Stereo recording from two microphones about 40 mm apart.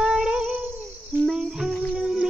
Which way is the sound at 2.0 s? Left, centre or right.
Centre.